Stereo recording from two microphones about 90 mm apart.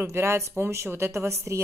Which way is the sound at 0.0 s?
30° right (ahead or behind).